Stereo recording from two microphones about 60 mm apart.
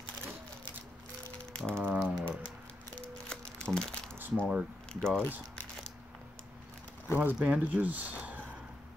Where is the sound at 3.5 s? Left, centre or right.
Centre.